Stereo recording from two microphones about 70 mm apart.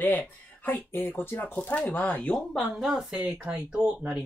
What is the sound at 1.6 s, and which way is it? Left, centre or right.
Speech, centre.